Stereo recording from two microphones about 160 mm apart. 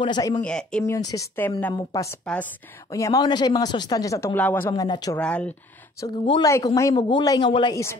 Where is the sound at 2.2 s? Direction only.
5° left (ahead or behind).